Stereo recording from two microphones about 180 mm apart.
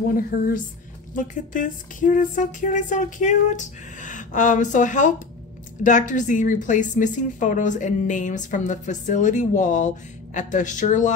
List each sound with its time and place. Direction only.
1.1 s a woman's voice: 45° left (ahead or behind)